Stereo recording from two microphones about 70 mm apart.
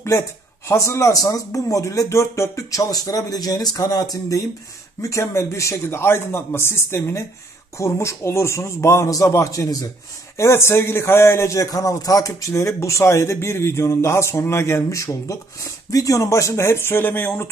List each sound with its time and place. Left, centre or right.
0.7 s a man's voice: left
5.0 s a man's voice: left
10.3 s a man's voice: left